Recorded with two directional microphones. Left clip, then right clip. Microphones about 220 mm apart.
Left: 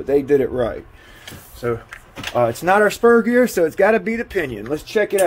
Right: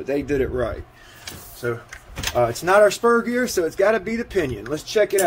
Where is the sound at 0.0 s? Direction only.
10° left (ahead or behind).